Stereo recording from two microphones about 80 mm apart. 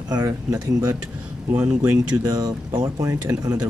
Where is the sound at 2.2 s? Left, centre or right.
Right.